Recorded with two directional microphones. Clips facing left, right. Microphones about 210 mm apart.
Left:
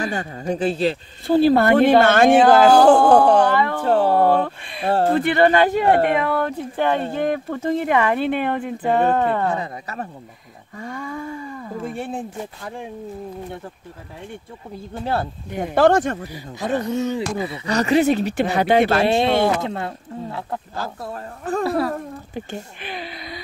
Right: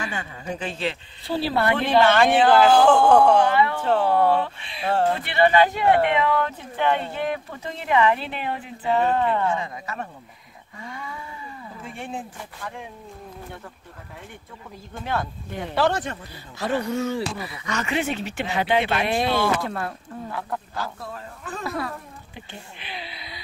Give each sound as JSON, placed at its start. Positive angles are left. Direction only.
{"t": 0.0, "sound": "speech", "side_deg": 40}
{"t": 15.6, "sound": "speech", "side_deg": 50}
{"t": 16.5, "sound": "speech", "side_deg": 20}
{"t": 17.4, "sound": "speech", "side_deg": 30}
{"t": 19.0, "sound": "speech", "side_deg": 25}
{"t": 20.7, "sound": "speech", "side_deg": 40}
{"t": 21.9, "sound": "speech", "side_deg": 45}